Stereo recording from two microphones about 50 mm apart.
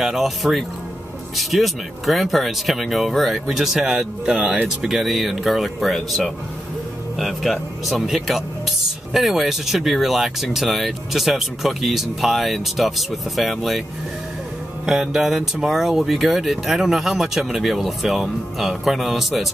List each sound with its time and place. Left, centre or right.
0.0 s speech: centre
14.9 s speech: centre